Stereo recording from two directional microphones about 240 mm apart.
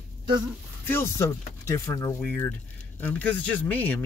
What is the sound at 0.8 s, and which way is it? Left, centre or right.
Speech, centre.